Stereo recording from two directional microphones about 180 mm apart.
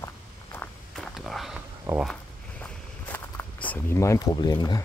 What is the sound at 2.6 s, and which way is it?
Walk, 10° left (ahead or behind).